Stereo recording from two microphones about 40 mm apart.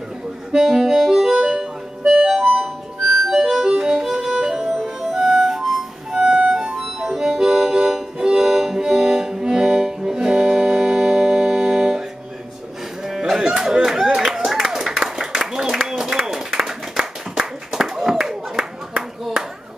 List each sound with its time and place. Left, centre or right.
0.5 s accordion: centre
2.1 s music: centre
2.5 s music: centre
3.4 s music: centre
6.1 s music: right
6.8 s music: centre
13.0 s a sound: centre